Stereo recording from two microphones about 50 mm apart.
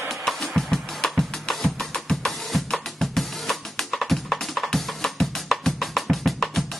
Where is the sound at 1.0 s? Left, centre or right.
Centre.